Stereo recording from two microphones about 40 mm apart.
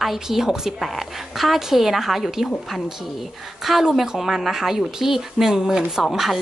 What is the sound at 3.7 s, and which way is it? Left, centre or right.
Speech, centre.